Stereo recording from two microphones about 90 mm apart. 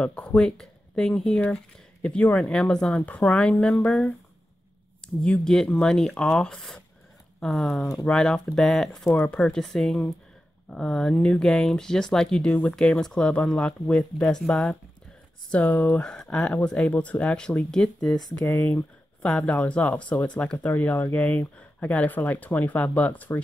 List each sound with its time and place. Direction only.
0.0 s speech: 10° left (ahead or behind)
18.7 s speech: 15° left (ahead or behind)